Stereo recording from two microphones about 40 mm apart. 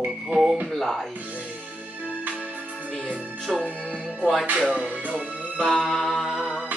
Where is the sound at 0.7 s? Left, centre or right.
Centre.